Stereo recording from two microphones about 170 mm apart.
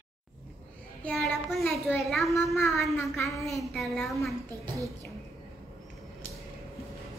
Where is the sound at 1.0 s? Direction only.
Centre (ahead or behind).